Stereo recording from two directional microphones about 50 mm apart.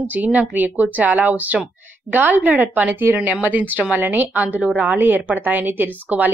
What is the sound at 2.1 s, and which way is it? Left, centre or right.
A woman's voice, right.